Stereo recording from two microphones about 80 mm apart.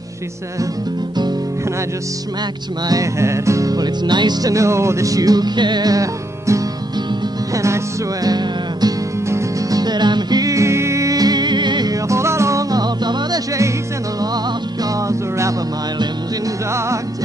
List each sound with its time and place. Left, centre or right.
2.9 s music: right
8.3 s music: right
10.5 s music: right
11.9 s music: right
12.7 s music: right